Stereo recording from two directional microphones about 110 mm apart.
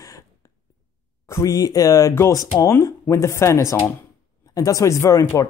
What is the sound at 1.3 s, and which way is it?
Speech, 30° left (ahead or behind).